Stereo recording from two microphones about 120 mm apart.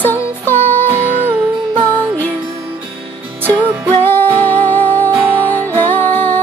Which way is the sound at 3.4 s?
15° right (ahead or behind).